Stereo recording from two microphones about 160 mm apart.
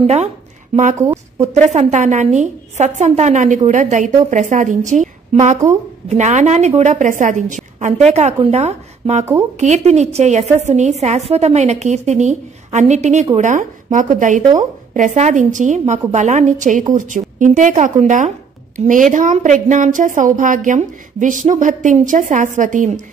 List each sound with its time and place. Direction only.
0.0 s a woman's voice: 40° right (ahead or behind)
0.9 s speech: 20° right (ahead or behind)
1.4 s a woman's voice: 45° right (ahead or behind)
8.1 s a woman's voice: 40° right (ahead or behind)